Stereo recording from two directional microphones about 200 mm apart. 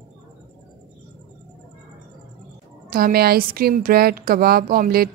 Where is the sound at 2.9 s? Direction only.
50° right (ahead or behind).